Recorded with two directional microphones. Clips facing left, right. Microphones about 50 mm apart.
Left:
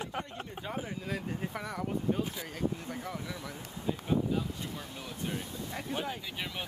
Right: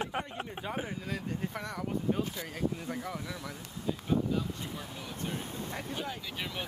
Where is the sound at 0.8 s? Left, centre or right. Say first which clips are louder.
Even; centre.